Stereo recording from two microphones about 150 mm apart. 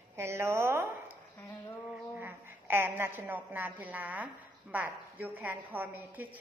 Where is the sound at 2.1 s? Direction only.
15° right (ahead or behind).